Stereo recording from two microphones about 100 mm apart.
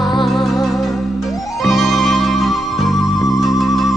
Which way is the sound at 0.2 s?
Centre (ahead or behind).